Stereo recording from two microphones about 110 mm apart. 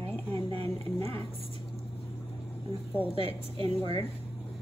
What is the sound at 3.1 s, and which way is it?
Speech, 55° right (ahead or behind).